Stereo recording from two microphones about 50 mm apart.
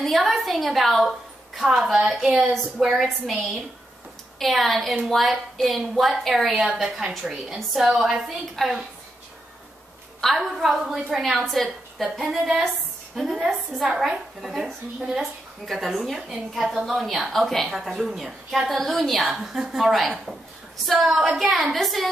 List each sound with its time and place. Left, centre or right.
0.0 s a woman's voice: centre
4.4 s a woman's voice: centre
8.6 s a woman's voice: centre
10.2 s a woman's voice: centre
15.0 s a woman's voice: centre
15.6 s a woman's voice: centre
17.8 s a woman's voice: centre